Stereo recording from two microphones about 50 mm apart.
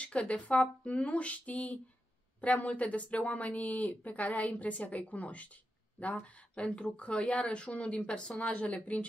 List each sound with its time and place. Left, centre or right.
0.0 s a woman's voice: left